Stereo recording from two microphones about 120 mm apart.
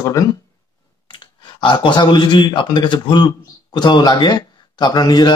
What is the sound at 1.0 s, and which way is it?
Speech, 40° left (ahead or behind).